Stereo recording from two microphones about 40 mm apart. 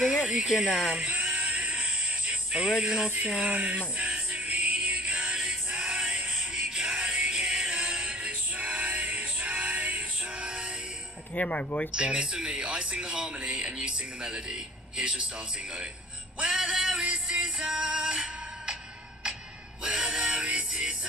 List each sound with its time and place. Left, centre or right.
0.5 s music: centre; by 1.8 s right
1.8 s a sound: right
3.2 s speech: right
3.9 s music: right
11.3 s speech: left
11.9 s speech: right
16.3 s a sound: centre
17.0 s music: right
19.8 s music: centre